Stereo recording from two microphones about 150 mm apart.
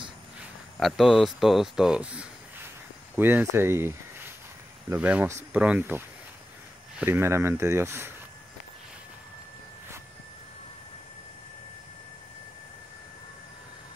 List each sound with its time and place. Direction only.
0.7 s speech: centre (ahead or behind); by 8.1 s 15° right (ahead or behind)